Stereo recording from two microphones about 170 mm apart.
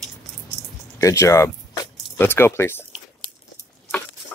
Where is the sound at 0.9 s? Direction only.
20° left (ahead or behind).